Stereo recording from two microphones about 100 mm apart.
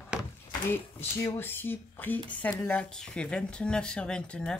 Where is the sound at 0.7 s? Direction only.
25° left (ahead or behind).